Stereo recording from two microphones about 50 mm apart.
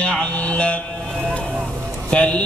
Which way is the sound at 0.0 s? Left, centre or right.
Centre.